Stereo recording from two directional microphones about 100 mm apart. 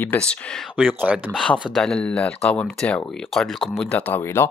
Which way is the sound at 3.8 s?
10° left (ahead or behind).